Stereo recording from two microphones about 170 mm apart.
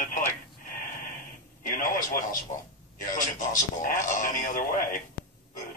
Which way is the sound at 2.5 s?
45° left (ahead or behind).